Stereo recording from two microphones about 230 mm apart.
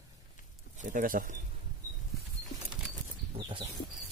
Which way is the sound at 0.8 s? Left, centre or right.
Right.